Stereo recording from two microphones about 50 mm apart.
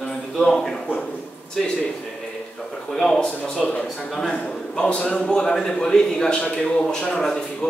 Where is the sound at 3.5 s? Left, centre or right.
Left.